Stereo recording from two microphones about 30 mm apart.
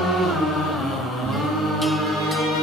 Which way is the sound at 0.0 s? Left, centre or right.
Centre.